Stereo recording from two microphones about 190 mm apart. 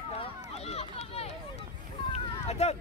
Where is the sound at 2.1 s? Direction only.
35° left (ahead or behind).